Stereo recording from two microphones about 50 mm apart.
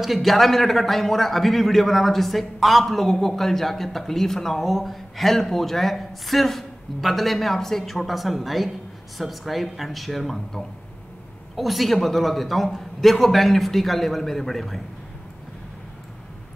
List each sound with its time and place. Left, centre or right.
0.0 s a man's voice: centre